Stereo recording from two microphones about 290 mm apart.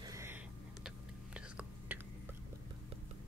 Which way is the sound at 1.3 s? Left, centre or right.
Centre.